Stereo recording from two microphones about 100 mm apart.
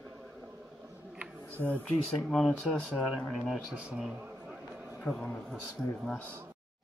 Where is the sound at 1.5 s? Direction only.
20° left (ahead or behind).